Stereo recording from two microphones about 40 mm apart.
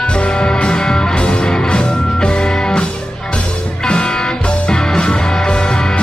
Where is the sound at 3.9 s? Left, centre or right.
Left.